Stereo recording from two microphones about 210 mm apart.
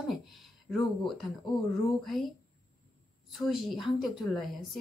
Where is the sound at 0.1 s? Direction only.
Centre (ahead or behind).